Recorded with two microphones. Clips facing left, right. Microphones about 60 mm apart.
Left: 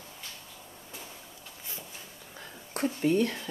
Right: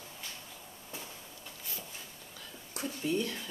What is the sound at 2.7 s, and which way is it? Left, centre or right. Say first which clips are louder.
Speech: left 7 dB; left.